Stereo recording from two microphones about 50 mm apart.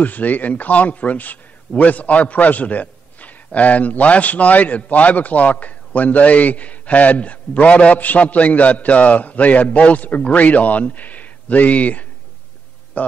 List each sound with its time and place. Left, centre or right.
0.0 s a man's voice: left